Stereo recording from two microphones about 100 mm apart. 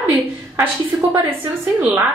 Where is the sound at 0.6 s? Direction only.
20° right (ahead or behind).